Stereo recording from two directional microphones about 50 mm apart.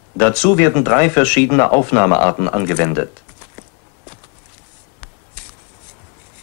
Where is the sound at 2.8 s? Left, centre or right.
Left.